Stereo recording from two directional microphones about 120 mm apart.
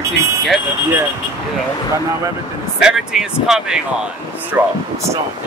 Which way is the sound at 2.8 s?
5° right (ahead or behind).